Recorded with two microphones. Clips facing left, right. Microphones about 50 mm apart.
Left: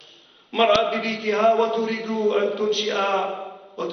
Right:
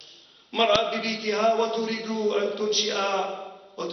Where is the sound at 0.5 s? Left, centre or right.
Centre.